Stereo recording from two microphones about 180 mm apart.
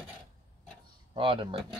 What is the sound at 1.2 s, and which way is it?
Speech, 30° right (ahead or behind).